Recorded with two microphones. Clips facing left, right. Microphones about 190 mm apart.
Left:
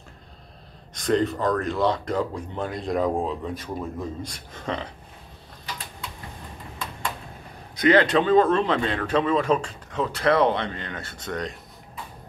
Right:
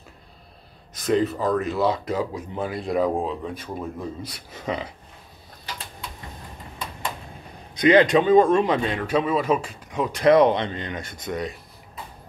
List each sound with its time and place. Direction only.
0.9 s speech: 5° right (ahead or behind)
7.7 s speech: 15° right (ahead or behind)